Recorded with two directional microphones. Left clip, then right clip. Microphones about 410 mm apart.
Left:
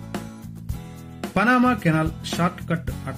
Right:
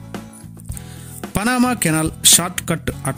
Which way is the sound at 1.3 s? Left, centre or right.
Right.